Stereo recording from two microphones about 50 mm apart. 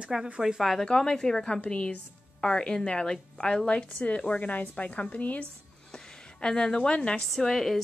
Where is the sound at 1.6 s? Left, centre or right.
Left.